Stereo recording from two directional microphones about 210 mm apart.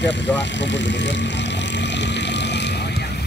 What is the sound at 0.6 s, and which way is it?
Speech, 55° left (ahead or behind).